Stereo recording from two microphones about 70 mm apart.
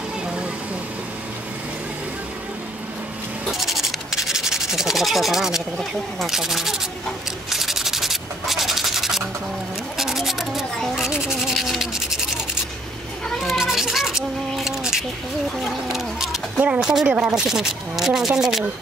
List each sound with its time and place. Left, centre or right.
3.5 s sanding: centre
5.8 s speech: centre
6.3 s speech: centre
7.4 s rub: centre
9.9 s a sound: centre
13.4 s scissors: centre
15.6 s a sound: centre
16.5 s speech: centre